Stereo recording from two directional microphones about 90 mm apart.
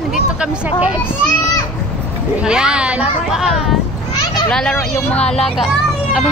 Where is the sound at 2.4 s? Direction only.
10° right (ahead or behind).